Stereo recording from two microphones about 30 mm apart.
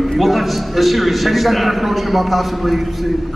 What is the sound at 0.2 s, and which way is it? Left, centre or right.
A man's voice, centre.